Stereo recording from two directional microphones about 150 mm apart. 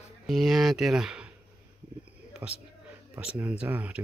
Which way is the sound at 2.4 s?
10° right (ahead or behind).